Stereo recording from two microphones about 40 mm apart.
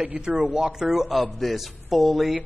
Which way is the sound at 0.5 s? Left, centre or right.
Right.